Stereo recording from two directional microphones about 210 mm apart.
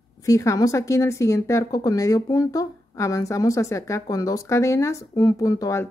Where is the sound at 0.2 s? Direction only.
15° left (ahead or behind).